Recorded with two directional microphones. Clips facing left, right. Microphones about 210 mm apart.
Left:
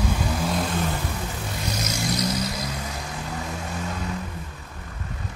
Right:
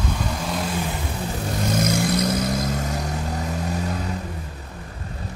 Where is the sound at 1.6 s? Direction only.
50° right (ahead or behind).